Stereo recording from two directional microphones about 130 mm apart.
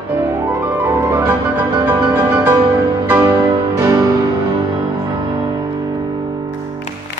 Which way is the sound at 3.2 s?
25° right (ahead or behind).